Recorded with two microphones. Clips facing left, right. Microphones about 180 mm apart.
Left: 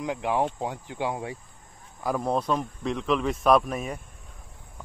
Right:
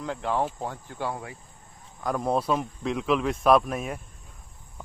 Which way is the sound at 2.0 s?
Centre (ahead or behind).